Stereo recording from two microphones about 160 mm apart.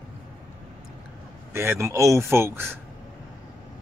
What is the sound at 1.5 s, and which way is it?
Speech, 15° right (ahead or behind).